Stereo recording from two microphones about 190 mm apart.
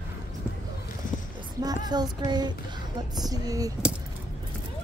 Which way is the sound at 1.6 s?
20° right (ahead or behind).